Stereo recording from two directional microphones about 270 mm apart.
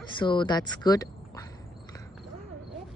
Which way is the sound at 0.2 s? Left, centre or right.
Centre.